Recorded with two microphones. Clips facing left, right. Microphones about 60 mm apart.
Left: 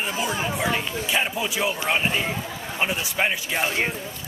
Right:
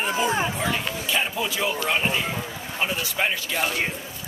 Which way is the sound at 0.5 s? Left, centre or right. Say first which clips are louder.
Left 1 dB; centre.